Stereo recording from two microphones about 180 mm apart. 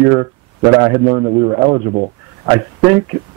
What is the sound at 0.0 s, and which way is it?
A man's voice, 20° right (ahead or behind).